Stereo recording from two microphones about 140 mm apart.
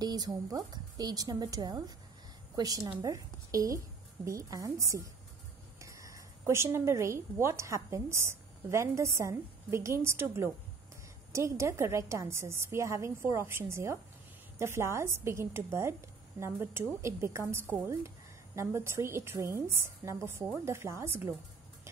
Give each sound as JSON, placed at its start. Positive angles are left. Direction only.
{"t": 0.0, "sound": "a woman's voice", "side_deg": -30}